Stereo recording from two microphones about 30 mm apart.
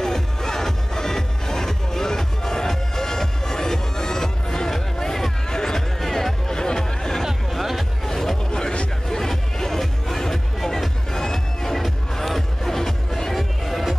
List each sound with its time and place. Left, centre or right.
0.0 s music: centre
7.5 s music: centre
8.1 s music: centre